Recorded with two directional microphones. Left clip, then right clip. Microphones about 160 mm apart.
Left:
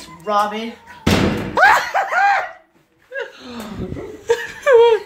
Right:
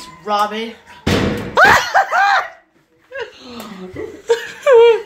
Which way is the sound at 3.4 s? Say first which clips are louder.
Even; 35° left (ahead or behind).